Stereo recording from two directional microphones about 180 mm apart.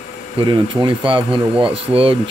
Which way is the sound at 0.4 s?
25° right (ahead or behind).